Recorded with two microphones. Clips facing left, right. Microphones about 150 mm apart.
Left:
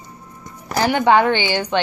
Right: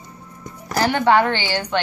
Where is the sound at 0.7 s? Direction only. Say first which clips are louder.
Left 1 dB; 15° left (ahead or behind).